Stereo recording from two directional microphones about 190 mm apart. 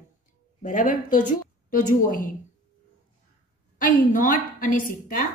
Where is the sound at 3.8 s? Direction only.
45° left (ahead or behind).